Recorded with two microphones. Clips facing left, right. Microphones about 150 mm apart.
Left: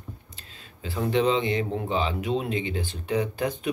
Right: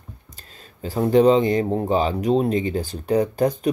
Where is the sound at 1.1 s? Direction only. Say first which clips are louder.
Right 8 dB; 40° right (ahead or behind).